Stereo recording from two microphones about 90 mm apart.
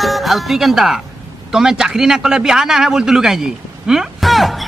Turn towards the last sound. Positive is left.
turn(degrees=0)  # may be behind; listen again after turning